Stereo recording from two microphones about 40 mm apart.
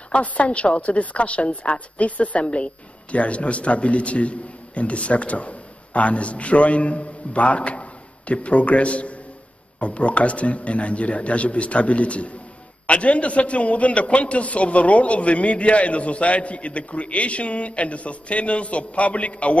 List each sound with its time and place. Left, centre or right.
0.1 s a woman's voice: left